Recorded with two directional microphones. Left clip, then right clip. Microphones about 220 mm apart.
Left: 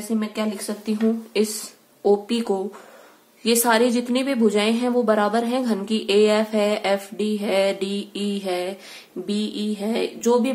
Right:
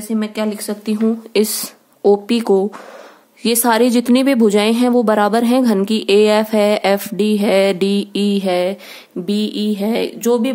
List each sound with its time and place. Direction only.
0.2 s a woman's voice: 50° right (ahead or behind)